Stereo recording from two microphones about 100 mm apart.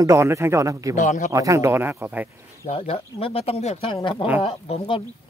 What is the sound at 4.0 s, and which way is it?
Speech, 55° left (ahead or behind).